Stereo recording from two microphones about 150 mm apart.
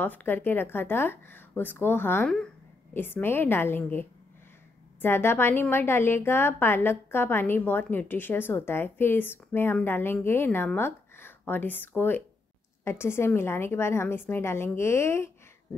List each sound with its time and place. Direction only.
0.0 s a woman's voice: 15° left (ahead or behind)